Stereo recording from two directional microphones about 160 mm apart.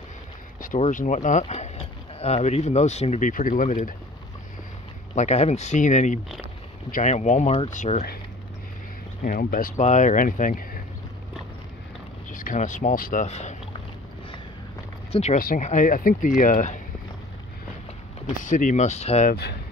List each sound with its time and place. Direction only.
0.7 s speech: 50° left (ahead or behind)
5.1 s speech: 45° left (ahead or behind)
9.2 s speech: 60° left (ahead or behind)
12.3 s speech: 55° left (ahead or behind)
15.3 s speech: 60° left (ahead or behind)
18.4 s speech: 55° left (ahead or behind)